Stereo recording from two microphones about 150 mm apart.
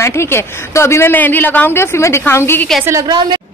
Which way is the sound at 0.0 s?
15° left (ahead or behind).